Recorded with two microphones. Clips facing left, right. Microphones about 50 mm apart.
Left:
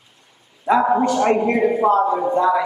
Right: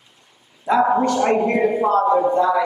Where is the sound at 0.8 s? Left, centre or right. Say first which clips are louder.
Left 1 dB; centre.